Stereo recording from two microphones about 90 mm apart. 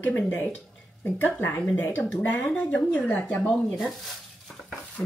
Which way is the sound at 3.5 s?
5° right (ahead or behind).